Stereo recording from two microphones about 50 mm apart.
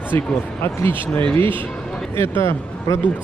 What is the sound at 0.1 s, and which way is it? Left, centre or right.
Speech, left.